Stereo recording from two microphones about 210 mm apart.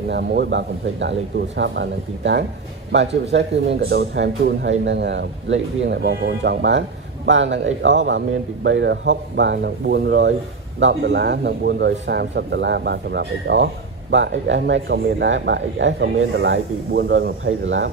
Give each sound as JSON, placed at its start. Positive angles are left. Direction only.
{"t": 0.1, "sound": "speech", "side_deg": -55}
{"t": 3.9, "sound": "a man's voice", "side_deg": -55}